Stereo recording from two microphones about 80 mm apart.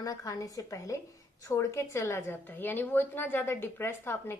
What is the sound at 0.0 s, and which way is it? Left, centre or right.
A woman's voice, left.